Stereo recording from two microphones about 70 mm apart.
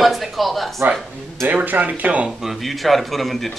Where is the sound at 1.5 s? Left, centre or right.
Right.